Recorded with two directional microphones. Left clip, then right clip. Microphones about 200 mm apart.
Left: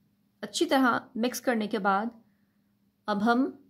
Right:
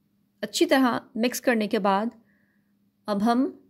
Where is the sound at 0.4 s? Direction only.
20° right (ahead or behind).